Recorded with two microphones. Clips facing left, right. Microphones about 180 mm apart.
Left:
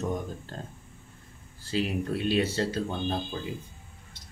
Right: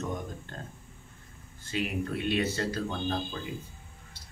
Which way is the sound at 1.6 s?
30° left (ahead or behind).